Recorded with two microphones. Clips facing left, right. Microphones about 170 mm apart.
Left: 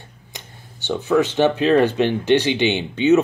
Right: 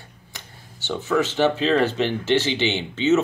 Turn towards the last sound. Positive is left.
turn(degrees=15)  # may be behind; listen again after turning